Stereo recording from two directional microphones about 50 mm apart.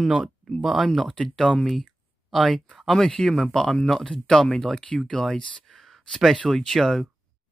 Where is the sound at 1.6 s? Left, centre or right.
Centre.